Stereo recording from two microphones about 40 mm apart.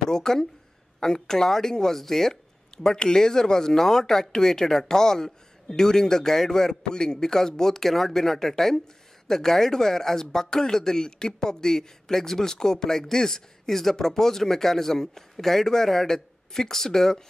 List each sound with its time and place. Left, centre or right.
0.1 s speech: centre